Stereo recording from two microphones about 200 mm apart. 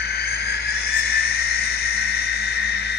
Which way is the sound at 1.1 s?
50° left (ahead or behind).